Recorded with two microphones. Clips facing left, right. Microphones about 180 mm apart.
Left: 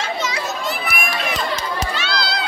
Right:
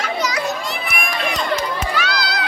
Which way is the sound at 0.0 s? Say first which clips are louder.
Right 2 dB; 25° left (ahead or behind).